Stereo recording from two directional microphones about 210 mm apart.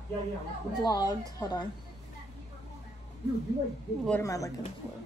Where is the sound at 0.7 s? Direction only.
20° left (ahead or behind).